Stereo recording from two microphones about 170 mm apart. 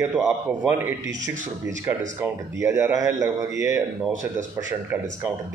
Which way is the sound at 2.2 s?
15° right (ahead or behind).